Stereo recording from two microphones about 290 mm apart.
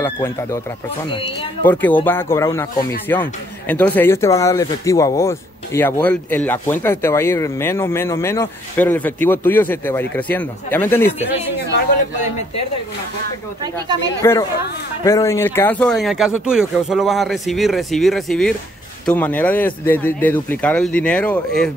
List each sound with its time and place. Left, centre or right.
0.0 s speech: centre
1.6 s speech: centre
14.2 s speech: centre